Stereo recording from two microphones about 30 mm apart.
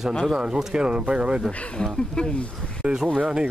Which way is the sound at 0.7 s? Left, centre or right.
Right.